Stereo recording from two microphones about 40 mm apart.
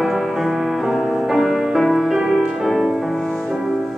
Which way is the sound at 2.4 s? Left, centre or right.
Centre.